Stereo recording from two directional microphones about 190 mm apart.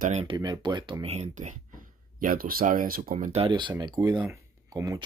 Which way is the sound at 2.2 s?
50° right (ahead or behind).